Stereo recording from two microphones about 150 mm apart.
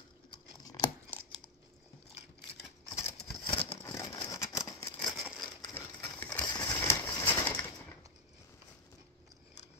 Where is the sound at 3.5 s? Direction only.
35° left (ahead or behind).